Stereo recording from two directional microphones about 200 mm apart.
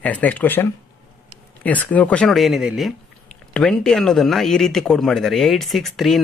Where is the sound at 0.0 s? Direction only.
5° left (ahead or behind).